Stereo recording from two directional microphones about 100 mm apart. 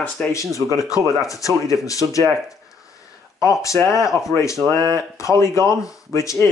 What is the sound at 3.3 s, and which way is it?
Speech, 30° left (ahead or behind).